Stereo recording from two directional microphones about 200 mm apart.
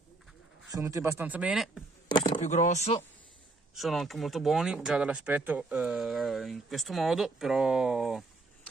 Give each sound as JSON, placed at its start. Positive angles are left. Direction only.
{"t": 0.7, "sound": "speech", "side_deg": -15}
{"t": 2.0, "sound": "a sound", "side_deg": 25}
{"t": 2.4, "sound": "speech", "side_deg": 35}
{"t": 3.7, "sound": "speech", "side_deg": 0}